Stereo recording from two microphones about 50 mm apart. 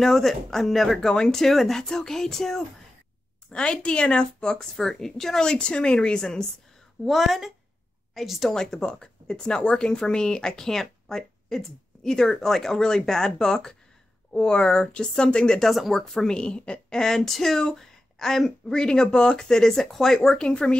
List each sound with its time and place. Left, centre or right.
0.0 s speech: centre
7.1 s speech: centre
15.6 s speech: centre
16.3 s speech: left